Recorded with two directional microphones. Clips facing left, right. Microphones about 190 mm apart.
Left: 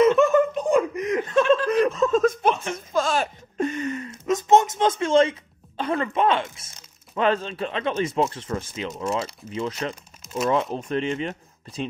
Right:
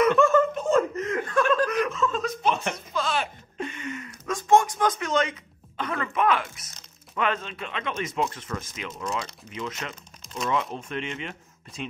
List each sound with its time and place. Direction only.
0.0 s snicker: 20° left (ahead or behind)
1.7 s snicker: 35° left (ahead or behind)
2.7 s a sound: 45° left (ahead or behind); by 5.3 s 30° left (ahead or behind)
5.8 s speech: 30° left (ahead or behind)